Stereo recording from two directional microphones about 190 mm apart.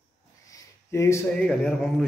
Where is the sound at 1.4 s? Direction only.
Centre (ahead or behind).